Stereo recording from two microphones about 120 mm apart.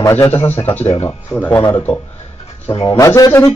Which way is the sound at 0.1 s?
20° left (ahead or behind).